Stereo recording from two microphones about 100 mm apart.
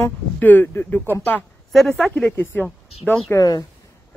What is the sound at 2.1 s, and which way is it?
Speech, 15° left (ahead or behind).